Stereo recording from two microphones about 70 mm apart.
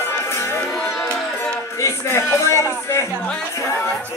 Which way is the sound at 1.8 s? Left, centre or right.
Left.